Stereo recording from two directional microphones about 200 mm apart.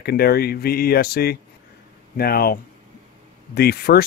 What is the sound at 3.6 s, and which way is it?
Speech, 55° left (ahead or behind).